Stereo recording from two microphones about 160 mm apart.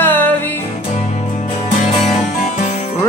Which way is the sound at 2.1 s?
50° left (ahead or behind).